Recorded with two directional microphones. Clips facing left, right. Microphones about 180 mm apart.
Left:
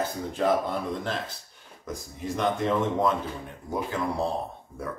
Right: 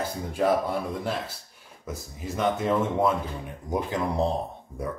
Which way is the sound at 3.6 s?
20° right (ahead or behind).